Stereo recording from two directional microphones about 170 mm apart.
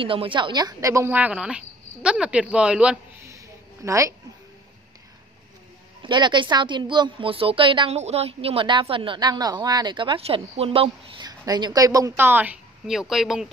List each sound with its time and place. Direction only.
0.0 s a woman's voice: 30° right (ahead or behind); by 3.0 s 5° right (ahead or behind)
3.2 s a sound: 15° right (ahead or behind)
6.0 s a woman's voice: 25° right (ahead or behind); by 13.5 s centre (ahead or behind)